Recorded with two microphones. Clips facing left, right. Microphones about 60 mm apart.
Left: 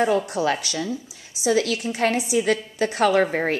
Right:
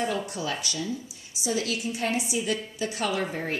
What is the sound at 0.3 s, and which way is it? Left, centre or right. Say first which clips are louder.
A woman's voice: left 8 dB; left.